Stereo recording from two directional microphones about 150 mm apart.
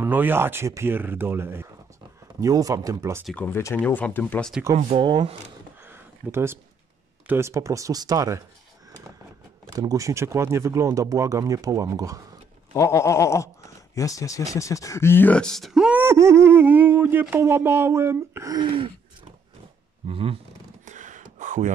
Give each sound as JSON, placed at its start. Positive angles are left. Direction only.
{"t": 0.0, "sound": "speech", "side_deg": -15}
{"t": 3.3, "sound": "speech", "side_deg": 10}
{"t": 4.9, "sound": "speech", "side_deg": -30}
{"t": 5.9, "sound": "a sound", "side_deg": -15}
{"t": 7.2, "sound": "speech", "side_deg": -20}
{"t": 9.7, "sound": "speech", "side_deg": -20}
{"t": 12.7, "sound": "a sound", "side_deg": 20}
{"t": 13.9, "sound": "speech", "side_deg": 20}
{"t": 20.1, "sound": "speech", "side_deg": -40}
{"t": 20.8, "sound": "a sound", "side_deg": -55}